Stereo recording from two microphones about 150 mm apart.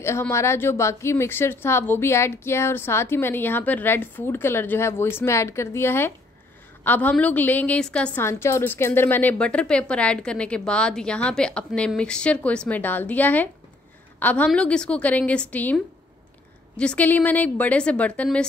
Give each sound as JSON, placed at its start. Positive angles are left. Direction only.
{"t": 0.0, "sound": "a woman's voice", "side_deg": 15}